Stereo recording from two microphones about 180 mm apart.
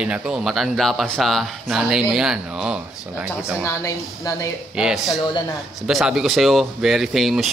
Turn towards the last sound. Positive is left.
turn(degrees=0)  # may be behind; listen again after turning